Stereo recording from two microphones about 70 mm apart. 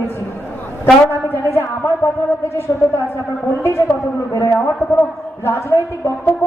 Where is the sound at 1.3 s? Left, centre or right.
Left.